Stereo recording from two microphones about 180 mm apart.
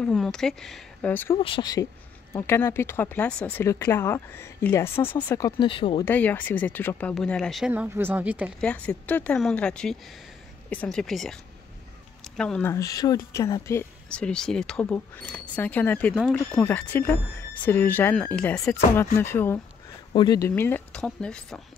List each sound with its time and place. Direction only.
0.0 s speech: 5° left (ahead or behind)
1.4 s speech: 25° left (ahead or behind)
5.6 s speech: 25° left (ahead or behind)
6.0 s speech: 10° left (ahead or behind)
7.7 s speech: 10° right (ahead or behind)
8.5 s speech: 5° left (ahead or behind)
12.4 s speech: 5° left (ahead or behind)
12.7 s speech: 20° left (ahead or behind)
14.0 s speech: 5° left (ahead or behind)
20.1 s speech: 25° left (ahead or behind); by 21.5 s 5° left (ahead or behind)